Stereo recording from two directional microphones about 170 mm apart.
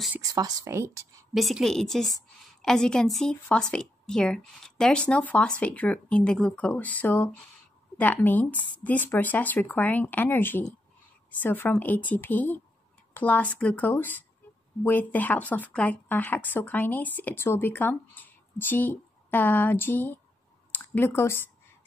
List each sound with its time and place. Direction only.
0.2 s a woman's voice: 20° right (ahead or behind)
1.3 s a woman's voice: centre (ahead or behind)